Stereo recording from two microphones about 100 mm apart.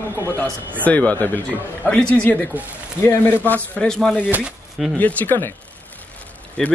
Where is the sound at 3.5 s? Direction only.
10° left (ahead or behind).